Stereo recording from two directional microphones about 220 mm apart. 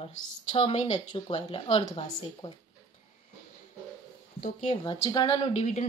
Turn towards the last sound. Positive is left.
turn(degrees=30)  # may be behind; listen again after turning